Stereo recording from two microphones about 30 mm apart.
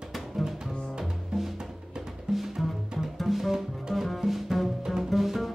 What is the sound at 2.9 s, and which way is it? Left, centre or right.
Double bass, centre.